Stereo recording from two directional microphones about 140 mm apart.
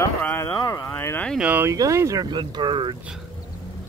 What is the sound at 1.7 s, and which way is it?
Speech, 20° right (ahead or behind).